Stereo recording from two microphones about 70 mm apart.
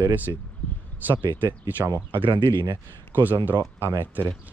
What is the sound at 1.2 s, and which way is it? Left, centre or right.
Speech, right.